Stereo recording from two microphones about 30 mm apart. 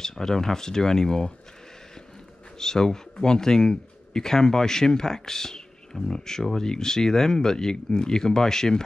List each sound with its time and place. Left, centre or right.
0.0 s speech: centre
2.6 s speech: centre